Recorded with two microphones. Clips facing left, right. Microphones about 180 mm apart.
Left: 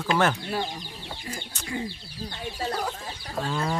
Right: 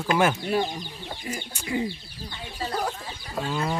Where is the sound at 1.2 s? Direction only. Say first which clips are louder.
Right 3 dB; 15° right (ahead or behind).